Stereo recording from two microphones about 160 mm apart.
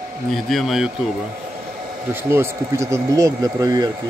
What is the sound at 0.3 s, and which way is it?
Speech, centre (ahead or behind).